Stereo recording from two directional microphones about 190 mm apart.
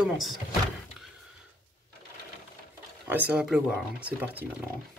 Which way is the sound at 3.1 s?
5° right (ahead or behind).